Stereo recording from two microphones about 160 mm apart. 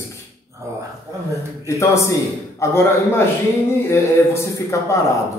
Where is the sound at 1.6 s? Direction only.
20° left (ahead or behind).